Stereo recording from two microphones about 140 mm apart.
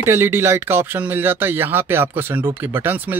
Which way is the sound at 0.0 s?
15° right (ahead or behind).